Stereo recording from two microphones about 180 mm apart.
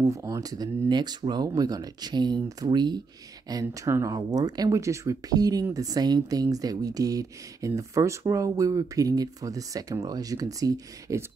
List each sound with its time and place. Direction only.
0.0 s speech: 15° right (ahead or behind)